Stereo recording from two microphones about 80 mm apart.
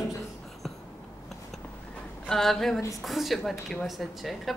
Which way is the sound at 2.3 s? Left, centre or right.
Centre.